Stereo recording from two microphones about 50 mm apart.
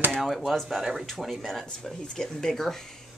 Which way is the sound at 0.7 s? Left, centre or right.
Centre.